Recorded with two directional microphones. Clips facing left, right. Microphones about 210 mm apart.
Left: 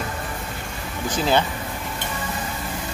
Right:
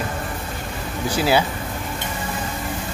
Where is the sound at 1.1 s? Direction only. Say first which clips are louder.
Right 2 dB; 10° right (ahead or behind).